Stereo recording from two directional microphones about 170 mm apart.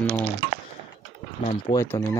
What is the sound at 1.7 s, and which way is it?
Speech, 20° left (ahead or behind).